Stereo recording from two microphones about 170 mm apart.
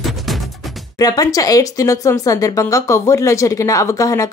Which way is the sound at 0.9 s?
20° left (ahead or behind).